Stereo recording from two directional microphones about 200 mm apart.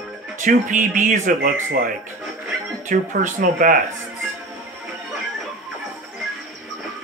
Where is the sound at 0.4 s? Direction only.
40° right (ahead or behind).